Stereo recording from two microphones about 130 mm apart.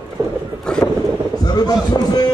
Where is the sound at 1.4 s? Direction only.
30° left (ahead or behind).